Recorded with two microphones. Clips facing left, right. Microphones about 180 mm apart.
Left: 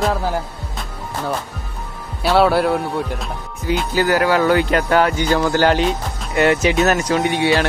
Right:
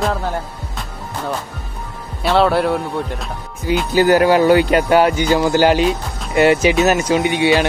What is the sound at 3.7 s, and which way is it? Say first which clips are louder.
Speech: right 4 dB; 20° right (ahead or behind).